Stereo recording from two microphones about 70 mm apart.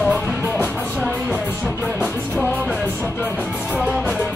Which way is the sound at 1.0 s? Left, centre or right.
Centre.